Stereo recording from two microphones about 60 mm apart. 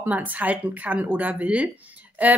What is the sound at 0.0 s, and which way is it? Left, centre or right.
Speech, right.